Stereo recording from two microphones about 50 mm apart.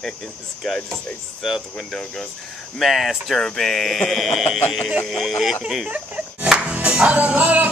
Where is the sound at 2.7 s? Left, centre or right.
Centre.